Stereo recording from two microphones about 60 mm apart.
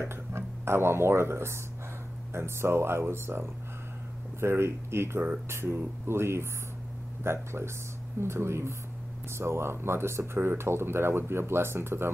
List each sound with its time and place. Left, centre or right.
0.0 s speech: right